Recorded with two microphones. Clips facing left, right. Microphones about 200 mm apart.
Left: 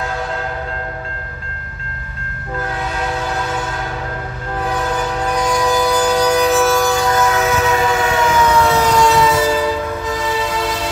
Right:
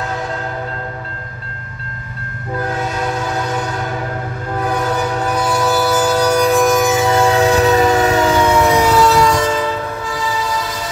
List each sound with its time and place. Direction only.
5.2 s train: 5° right (ahead or behind); by 8.5 s 35° right (ahead or behind)
8.5 s train: 15° right (ahead or behind)
9.0 s train: centre (ahead or behind)